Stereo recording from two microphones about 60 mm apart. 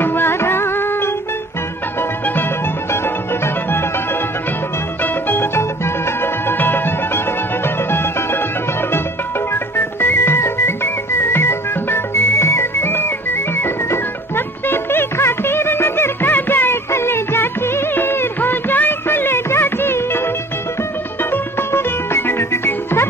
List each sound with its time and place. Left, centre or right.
0.0 s music: left
5.0 s music: left
9.5 s music: left
21.2 s music: left